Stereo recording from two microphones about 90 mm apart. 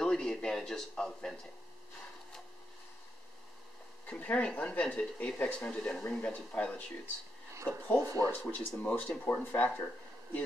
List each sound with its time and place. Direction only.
0.0 s speech: 5° left (ahead or behind)
4.1 s speech: 15° left (ahead or behind)
7.5 s speech: 35° right (ahead or behind)
8.3 s speech: 20° left (ahead or behind)